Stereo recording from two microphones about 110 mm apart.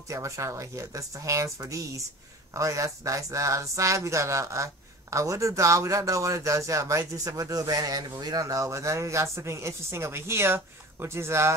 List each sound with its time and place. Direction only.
0.1 s speech: 30° right (ahead or behind)